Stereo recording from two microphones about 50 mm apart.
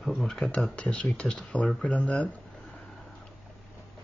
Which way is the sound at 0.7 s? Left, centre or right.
Left.